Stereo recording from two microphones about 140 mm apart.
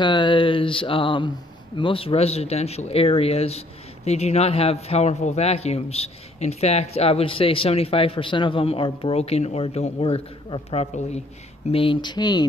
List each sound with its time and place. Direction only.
0.0 s speech: 35° left (ahead or behind); by 11.2 s 50° left (ahead or behind)
11.7 s speech: 40° left (ahead or behind)